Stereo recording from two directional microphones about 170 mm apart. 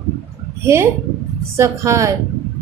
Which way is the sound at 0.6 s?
15° right (ahead or behind).